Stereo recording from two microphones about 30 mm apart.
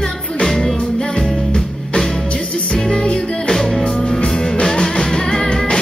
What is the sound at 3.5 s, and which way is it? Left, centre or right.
Music, centre.